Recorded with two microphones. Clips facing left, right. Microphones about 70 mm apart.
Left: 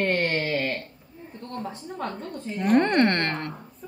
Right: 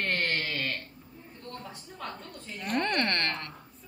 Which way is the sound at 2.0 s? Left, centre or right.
Left.